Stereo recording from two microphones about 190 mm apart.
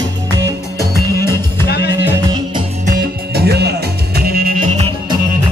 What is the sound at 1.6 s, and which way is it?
Music, 55° left (ahead or behind).